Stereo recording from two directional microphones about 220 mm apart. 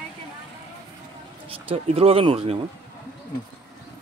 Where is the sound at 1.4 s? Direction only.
25° right (ahead or behind).